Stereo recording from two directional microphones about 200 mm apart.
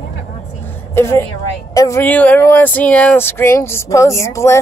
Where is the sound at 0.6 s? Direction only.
10° left (ahead or behind).